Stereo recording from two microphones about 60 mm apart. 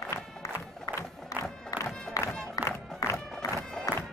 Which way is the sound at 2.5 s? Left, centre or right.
Left.